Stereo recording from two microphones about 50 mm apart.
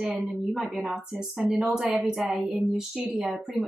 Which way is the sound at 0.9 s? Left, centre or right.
Centre.